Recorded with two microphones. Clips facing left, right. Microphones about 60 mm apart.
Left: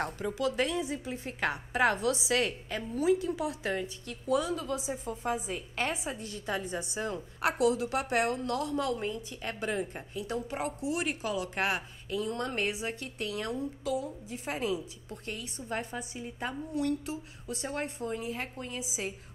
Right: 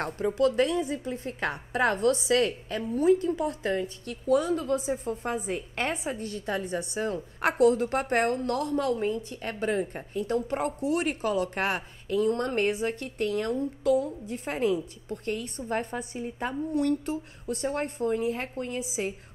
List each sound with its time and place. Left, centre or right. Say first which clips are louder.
0.3 s a woman's voice: right 7 dB; right